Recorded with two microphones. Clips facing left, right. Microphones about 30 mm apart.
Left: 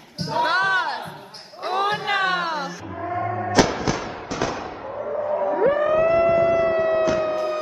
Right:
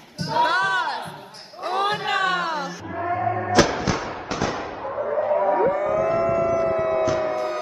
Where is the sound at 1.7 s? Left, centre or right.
Centre.